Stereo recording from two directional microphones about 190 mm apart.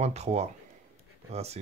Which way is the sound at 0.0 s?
35° right (ahead or behind).